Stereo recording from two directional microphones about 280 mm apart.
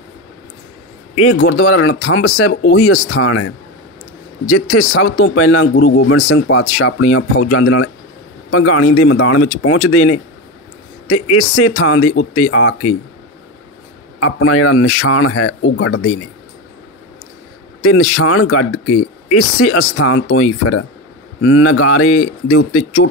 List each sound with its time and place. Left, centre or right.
1.2 s speech: left
14.2 s speech: left
17.8 s speech: left